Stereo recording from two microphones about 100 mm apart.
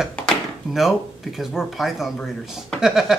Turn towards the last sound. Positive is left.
turn(degrees=0)  # may be behind; listen again after turning